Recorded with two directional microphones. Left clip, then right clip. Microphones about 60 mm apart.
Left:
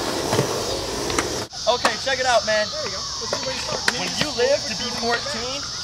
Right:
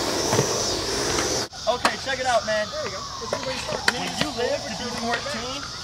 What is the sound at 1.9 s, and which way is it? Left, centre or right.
Speech, left.